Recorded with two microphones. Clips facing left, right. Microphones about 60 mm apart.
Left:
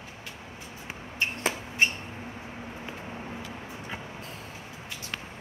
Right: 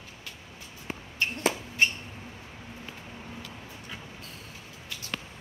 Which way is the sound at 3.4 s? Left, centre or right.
Left.